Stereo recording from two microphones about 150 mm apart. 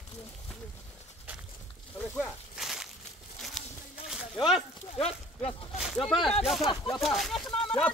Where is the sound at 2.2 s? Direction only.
Centre (ahead or behind).